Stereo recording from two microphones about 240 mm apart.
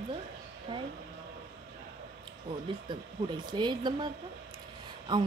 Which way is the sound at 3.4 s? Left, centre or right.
Centre.